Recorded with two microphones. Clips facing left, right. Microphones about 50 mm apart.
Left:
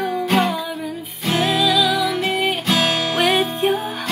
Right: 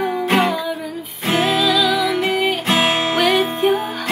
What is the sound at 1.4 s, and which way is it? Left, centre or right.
Music, centre.